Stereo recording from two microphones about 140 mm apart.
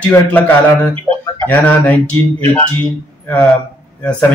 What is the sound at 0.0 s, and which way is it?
Speech, 10° left (ahead or behind).